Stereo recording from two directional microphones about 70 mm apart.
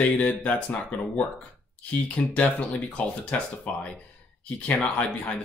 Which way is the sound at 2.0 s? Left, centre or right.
Centre.